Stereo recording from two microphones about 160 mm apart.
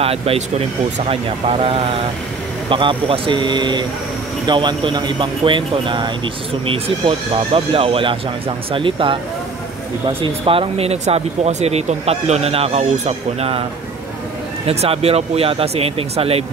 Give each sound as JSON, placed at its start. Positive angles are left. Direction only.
{"t": 0.0, "sound": "speech", "side_deg": -40}
{"t": 14.7, "sound": "speech", "side_deg": -40}